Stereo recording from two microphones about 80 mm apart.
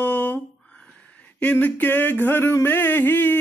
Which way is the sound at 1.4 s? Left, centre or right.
Left.